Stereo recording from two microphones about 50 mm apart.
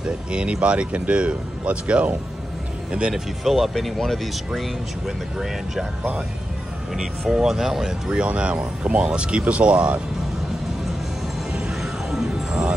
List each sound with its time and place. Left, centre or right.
0.3 s speech: right
3.4 s speech: centre
4.6 s speech: centre
6.9 s speech: centre
8.2 s speech: right
11.7 s music: centre